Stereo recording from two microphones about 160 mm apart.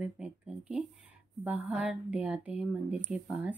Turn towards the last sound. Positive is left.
turn(degrees=-5)  # may be behind; listen again after turning